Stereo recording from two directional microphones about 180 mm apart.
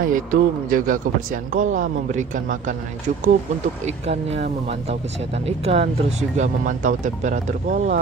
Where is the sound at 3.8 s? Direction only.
35° right (ahead or behind).